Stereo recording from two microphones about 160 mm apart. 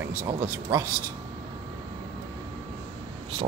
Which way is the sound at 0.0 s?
15° right (ahead or behind).